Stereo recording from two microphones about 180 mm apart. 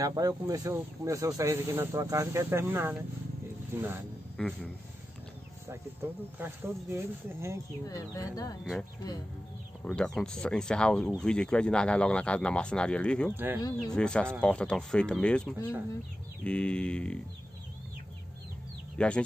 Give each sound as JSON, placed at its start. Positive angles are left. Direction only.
{"t": 0.0, "sound": "speech", "side_deg": -20}
{"t": 4.4, "sound": "speech", "side_deg": 5}
{"t": 6.0, "sound": "speech", "side_deg": -15}
{"t": 7.8, "sound": "speech", "side_deg": 20}
{"t": 9.8, "sound": "speech", "side_deg": 5}
{"t": 18.9, "sound": "speech", "side_deg": 5}